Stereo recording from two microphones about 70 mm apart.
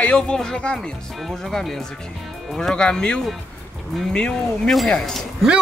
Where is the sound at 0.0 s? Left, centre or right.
Centre.